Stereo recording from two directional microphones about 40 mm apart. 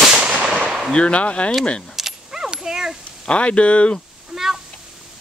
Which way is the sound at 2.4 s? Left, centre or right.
Centre.